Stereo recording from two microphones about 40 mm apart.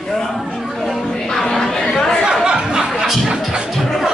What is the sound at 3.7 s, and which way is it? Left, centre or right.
Music, centre.